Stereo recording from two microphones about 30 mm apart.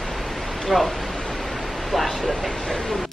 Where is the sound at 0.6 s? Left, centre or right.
Centre.